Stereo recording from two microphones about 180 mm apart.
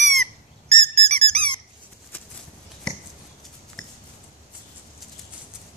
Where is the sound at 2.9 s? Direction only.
5° left (ahead or behind).